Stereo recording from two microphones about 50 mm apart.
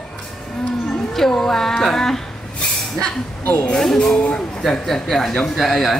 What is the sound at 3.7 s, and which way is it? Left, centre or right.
Speech, centre.